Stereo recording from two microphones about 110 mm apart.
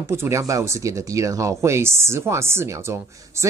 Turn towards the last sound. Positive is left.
turn(degrees=-25)  # may be behind; listen again after turning